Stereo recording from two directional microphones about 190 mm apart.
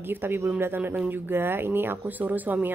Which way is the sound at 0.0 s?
10° right (ahead or behind).